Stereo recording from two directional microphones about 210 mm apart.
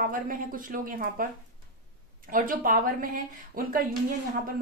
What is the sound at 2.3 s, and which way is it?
Speech, 40° right (ahead or behind).